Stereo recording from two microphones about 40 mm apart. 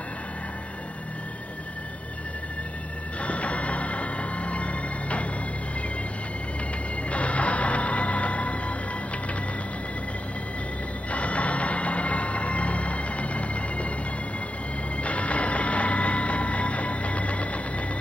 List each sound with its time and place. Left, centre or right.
3.2 s music: left
7.1 s music: left
11.1 s music: left
15.0 s vehicle: left